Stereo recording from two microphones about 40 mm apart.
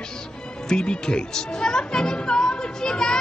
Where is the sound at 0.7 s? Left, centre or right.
Left.